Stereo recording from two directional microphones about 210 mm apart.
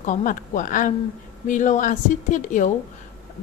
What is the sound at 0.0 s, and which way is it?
A woman's voice, 35° left (ahead or behind).